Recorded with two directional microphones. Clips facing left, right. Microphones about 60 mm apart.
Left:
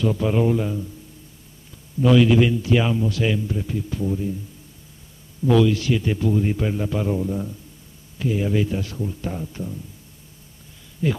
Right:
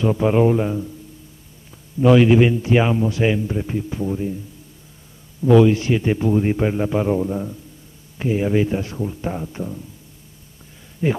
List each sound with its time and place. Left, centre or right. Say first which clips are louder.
0.0 s a man's voice: right 4 dB; right
2.0 s a man's voice: right 3 dB; right
5.4 s a man's voice: right 4 dB; right
11.0 s a man's voice: right 3 dB; right